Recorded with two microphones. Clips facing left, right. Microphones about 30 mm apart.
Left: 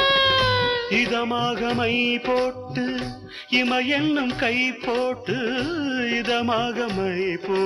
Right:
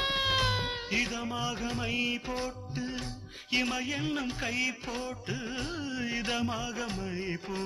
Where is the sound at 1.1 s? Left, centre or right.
Left.